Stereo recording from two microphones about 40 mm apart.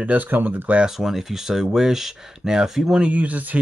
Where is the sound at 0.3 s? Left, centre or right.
Right.